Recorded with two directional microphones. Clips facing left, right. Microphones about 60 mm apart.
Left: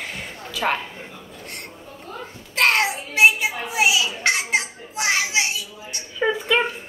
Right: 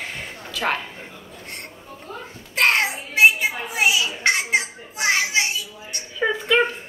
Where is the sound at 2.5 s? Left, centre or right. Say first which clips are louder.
Even; centre.